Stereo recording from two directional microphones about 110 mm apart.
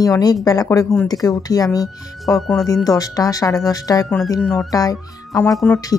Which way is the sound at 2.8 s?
35° left (ahead or behind).